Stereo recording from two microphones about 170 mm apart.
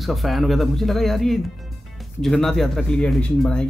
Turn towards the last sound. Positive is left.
turn(degrees=5)  # may be behind; listen again after turning